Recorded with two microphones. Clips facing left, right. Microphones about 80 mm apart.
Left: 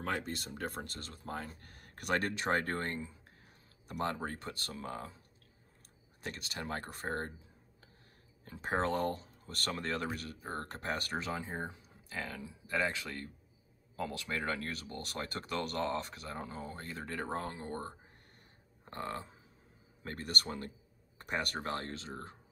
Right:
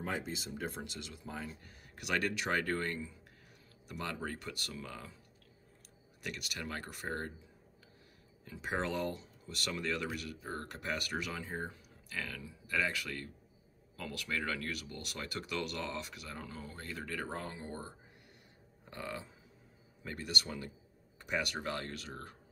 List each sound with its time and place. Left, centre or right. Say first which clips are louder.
0.0 s speech: left 2 dB; left
6.2 s speech: left 1 dB; left
8.5 s speech: left 3 dB; left